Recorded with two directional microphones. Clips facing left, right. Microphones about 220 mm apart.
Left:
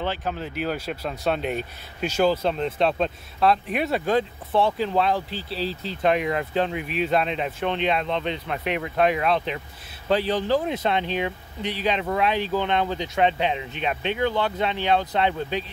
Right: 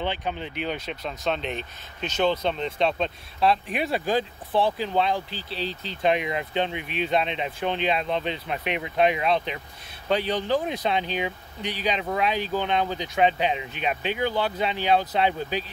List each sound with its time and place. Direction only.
0.0 s speech: centre (ahead or behind)
8.6 s speech: 35° left (ahead or behind)
9.2 s speech: centre (ahead or behind)